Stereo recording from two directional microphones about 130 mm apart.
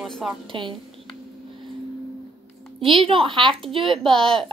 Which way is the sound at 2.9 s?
45° right (ahead or behind).